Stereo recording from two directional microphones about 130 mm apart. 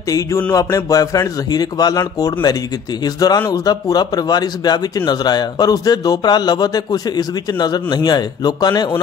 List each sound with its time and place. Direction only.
0.6 s a man's voice: 25° left (ahead or behind)